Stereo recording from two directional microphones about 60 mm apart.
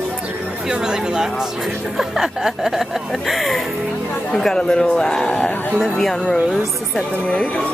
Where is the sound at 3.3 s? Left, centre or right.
Centre.